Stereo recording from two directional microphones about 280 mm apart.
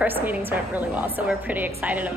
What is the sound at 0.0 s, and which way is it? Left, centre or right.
A woman's voice, centre.